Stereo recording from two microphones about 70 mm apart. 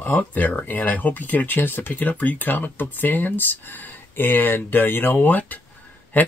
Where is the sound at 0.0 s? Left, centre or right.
Left.